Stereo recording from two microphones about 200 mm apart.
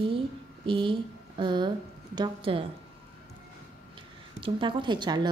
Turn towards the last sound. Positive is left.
turn(degrees=-20)  # may be behind; listen again after turning